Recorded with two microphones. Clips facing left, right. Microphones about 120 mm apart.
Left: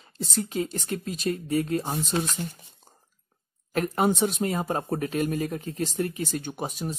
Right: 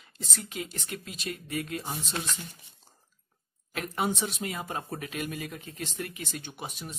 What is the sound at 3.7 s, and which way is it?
Speech, 40° left (ahead or behind).